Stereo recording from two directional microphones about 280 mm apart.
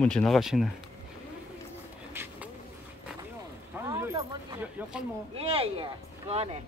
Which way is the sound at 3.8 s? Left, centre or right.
Centre.